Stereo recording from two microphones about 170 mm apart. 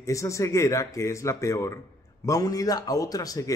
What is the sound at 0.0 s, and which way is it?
A man's voice, 20° left (ahead or behind).